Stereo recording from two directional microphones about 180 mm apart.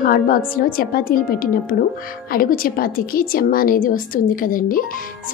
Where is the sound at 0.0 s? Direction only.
50° left (ahead or behind).